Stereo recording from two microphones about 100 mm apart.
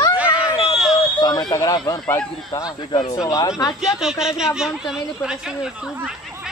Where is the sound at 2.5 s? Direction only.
35° left (ahead or behind).